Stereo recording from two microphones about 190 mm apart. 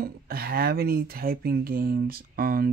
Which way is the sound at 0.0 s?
55° right (ahead or behind).